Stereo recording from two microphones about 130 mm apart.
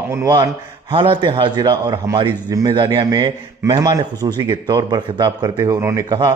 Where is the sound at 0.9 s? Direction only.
40° right (ahead or behind).